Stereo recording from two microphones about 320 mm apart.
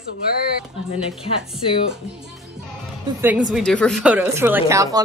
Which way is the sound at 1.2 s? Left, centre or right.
Centre.